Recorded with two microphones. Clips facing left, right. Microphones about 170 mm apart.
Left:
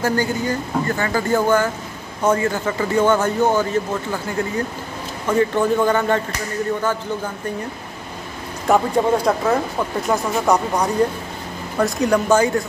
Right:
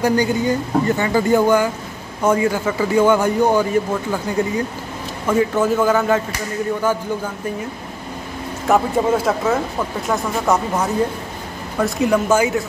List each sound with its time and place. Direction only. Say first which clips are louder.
0.0 s a man's voice: right 3 dB; 15° right (ahead or behind)
8.6 s a man's voice: even; 5° right (ahead or behind)